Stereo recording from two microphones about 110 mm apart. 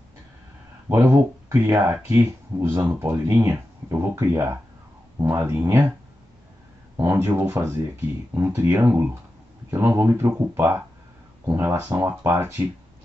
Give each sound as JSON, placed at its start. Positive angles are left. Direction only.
{"t": 0.8, "sound": "speech", "side_deg": -15}
{"t": 7.0, "sound": "speech", "side_deg": -20}